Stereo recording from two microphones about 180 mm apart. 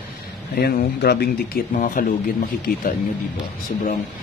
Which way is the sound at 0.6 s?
60° left (ahead or behind).